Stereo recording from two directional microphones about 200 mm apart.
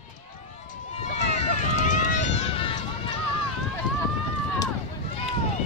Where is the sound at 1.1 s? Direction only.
40° left (ahead or behind).